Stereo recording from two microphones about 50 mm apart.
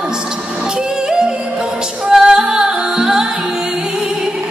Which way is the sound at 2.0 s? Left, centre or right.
Centre.